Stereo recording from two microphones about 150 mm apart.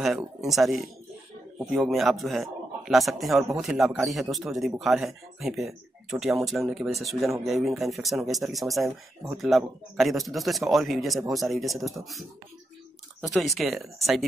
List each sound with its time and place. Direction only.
0.5 s speech: centre (ahead or behind)